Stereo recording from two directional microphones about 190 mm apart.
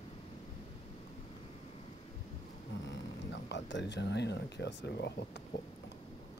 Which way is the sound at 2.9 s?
65° left (ahead or behind).